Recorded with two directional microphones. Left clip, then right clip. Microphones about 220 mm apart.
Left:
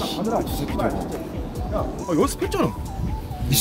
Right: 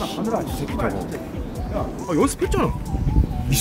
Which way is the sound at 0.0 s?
Centre (ahead or behind).